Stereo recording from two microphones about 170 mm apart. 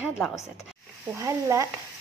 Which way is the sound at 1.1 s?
20° right (ahead or behind).